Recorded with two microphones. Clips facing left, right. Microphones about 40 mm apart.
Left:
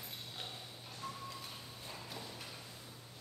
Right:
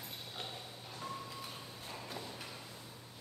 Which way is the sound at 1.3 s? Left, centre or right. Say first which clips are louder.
Right 2 dB; centre.